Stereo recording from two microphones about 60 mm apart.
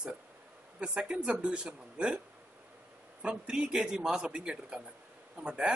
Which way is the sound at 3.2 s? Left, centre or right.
Centre.